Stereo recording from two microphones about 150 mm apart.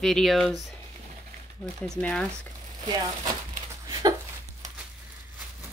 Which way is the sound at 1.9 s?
5° left (ahead or behind).